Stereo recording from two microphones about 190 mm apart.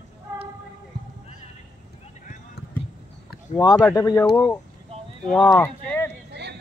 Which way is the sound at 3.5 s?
20° left (ahead or behind).